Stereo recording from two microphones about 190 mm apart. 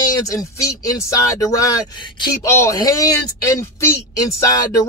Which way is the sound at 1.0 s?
15° left (ahead or behind).